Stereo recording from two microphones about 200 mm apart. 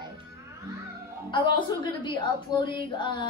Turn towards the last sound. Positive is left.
turn(degrees=25)  # may be behind; listen again after turning